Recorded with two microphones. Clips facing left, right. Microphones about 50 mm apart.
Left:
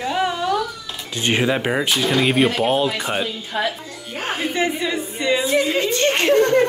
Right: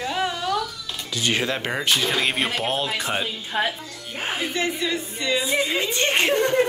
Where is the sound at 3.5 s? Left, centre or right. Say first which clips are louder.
Left 1 dB; centre.